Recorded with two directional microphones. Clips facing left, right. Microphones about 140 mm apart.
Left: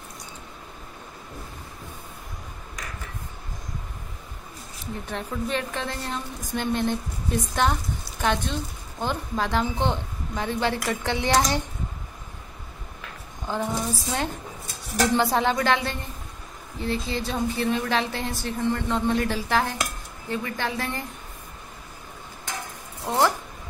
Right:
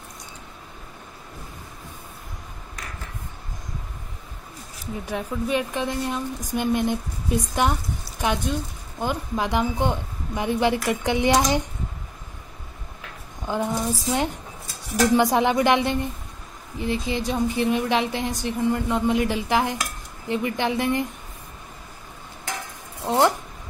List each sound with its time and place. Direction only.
5.0 s a woman's voice: 10° right (ahead or behind)
13.5 s a woman's voice: 15° right (ahead or behind)
23.0 s a sound: 20° right (ahead or behind)